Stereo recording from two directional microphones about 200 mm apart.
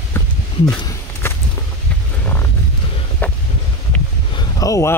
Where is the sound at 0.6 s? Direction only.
15° left (ahead or behind).